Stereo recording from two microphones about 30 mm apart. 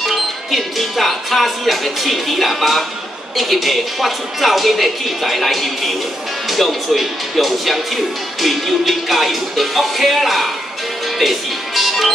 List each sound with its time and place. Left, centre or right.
0.0 s speech: centre
11.1 s music: centre